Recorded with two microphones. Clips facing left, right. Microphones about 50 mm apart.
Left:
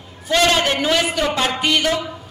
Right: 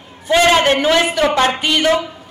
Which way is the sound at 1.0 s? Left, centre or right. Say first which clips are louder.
Right 5 dB; right.